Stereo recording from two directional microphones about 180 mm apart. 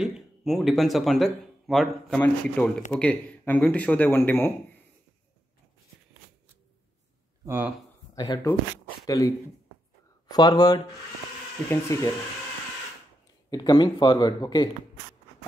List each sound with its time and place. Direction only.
0.0 s speech: centre (ahead or behind)
7.4 s speech: 10° right (ahead or behind)
8.1 s shuffling cards: 20° left (ahead or behind)
9.0 s speech: 20° left (ahead or behind)
10.3 s speech: 20° left (ahead or behind)
13.5 s speech: 20° left (ahead or behind)